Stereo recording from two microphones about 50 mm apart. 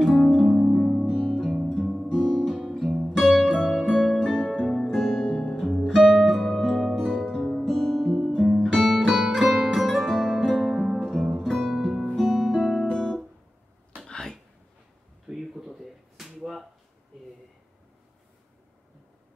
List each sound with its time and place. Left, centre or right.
0.1 s music: centre
2.0 s guitar: centre
2.5 s guitar: centre
3.2 s music: centre
5.9 s music: centre
12.2 s music: centre
12.8 s guitar: centre
13.9 s a sound: centre
15.2 s slap: centre